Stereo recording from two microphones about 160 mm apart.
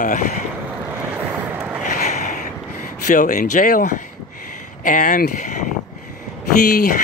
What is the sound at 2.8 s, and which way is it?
Speech, 55° left (ahead or behind).